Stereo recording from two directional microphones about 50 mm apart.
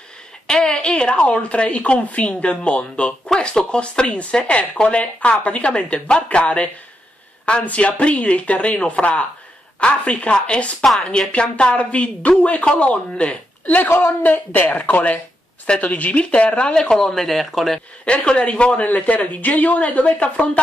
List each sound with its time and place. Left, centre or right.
0.5 s a sound: centre
0.7 s speech: centre
10.8 s speech: centre
11.1 s speech: left
13.9 s speech: left
16.7 s speech: centre
18.0 s speech: left